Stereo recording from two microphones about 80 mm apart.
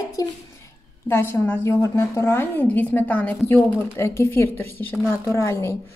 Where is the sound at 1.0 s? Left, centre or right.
Left.